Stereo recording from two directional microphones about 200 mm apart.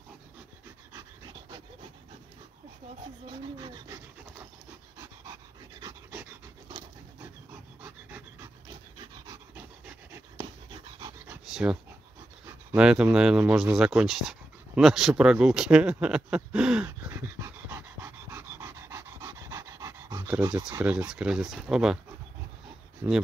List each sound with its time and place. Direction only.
0.9 s pant: 20° right (ahead or behind)
3.3 s rub: 25° right (ahead or behind)
4.9 s dog: 15° right (ahead or behind)
7.8 s pant: 10° right (ahead or behind)
8.6 s pant: 20° right (ahead or behind)
9.6 s pant: 10° right (ahead or behind)
10.3 s dog: 20° right (ahead or behind)
11.2 s dog: 5° right (ahead or behind)
12.4 s speech: 5° right (ahead or behind)
14.8 s a sound: centre (ahead or behind); by 20.8 s 20° right (ahead or behind)
20.8 s speech: 5° right (ahead or behind)
23.0 s speech: 10° right (ahead or behind)